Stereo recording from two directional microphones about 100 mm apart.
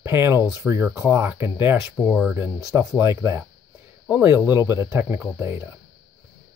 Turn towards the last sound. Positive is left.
turn(degrees=-25)  # may be behind; listen again after turning